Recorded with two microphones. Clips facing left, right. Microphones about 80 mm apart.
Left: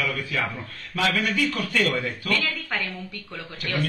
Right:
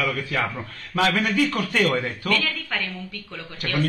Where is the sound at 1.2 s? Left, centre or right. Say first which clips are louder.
Right 3 dB; right.